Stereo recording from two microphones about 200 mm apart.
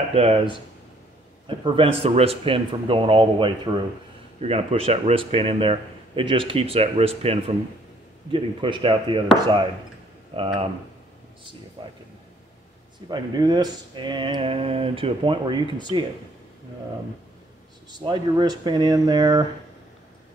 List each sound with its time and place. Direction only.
0.1 s speech: 30° right (ahead or behind)
1.6 s speech: 25° right (ahead or behind)
11.8 s speech: 25° right (ahead or behind)
13.1 s speech: 20° right (ahead or behind)
17.9 s speech: 20° right (ahead or behind)